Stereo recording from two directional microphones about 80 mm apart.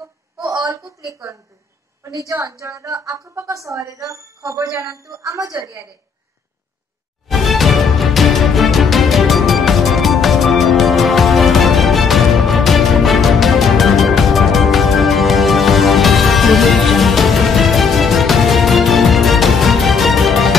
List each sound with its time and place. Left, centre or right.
0.4 s a sound: right
2.1 s speech: right
7.2 s music: centre